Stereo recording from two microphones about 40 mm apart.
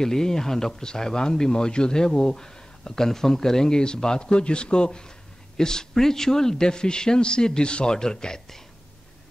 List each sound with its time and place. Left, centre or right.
0.0 s speech: centre